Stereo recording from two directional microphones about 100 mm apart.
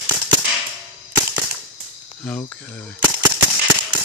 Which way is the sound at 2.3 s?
20° left (ahead or behind).